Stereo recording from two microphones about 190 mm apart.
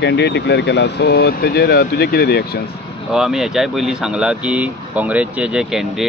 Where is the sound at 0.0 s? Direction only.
65° left (ahead or behind).